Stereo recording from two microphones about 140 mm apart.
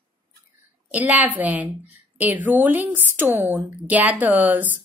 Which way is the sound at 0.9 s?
10° right (ahead or behind).